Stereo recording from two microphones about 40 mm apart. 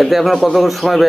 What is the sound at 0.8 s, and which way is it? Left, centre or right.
Speech, left.